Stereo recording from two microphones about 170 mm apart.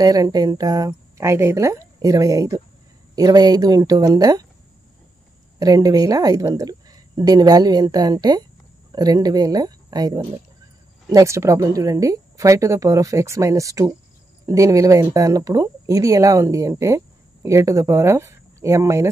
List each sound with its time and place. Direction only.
0.0 s a woman's voice: 20° right (ahead or behind)
5.6 s a woman's voice: 20° right (ahead or behind)